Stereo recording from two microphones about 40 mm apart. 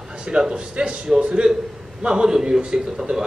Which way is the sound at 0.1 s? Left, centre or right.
Right.